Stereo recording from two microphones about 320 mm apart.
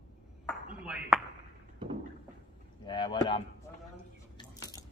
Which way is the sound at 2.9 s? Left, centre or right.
Centre.